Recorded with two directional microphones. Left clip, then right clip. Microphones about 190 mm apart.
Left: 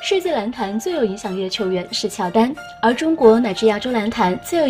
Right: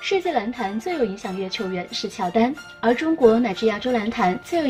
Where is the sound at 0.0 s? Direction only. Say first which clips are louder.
Left 3 dB; 45° left (ahead or behind).